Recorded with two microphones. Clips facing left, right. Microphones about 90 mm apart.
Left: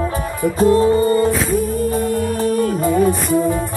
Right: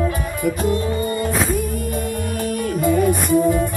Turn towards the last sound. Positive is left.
turn(degrees=30)  # may be behind; listen again after turning